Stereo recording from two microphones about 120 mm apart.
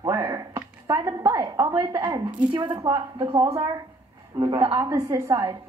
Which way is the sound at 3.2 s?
45° right (ahead or behind).